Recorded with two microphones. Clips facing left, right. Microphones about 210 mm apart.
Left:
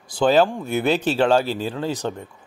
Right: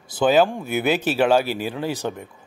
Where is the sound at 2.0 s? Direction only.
10° right (ahead or behind).